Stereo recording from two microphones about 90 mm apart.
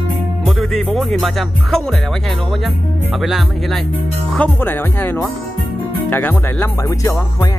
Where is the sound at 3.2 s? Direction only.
Centre (ahead or behind).